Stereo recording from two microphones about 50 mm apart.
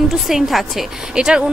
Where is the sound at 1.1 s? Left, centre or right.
Centre.